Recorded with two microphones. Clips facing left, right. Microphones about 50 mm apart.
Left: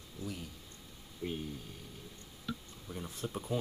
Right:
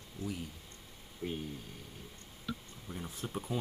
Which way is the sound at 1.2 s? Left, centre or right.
Right.